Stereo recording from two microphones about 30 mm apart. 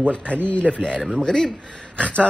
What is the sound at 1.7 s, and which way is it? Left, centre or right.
Speech, left.